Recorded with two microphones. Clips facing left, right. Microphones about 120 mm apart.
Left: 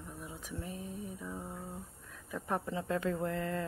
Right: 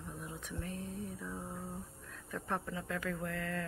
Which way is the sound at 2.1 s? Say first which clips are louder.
Left 3 dB; 10° left (ahead or behind).